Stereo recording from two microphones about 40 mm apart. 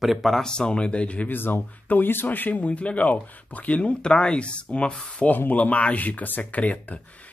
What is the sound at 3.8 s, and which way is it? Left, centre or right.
Speech, left.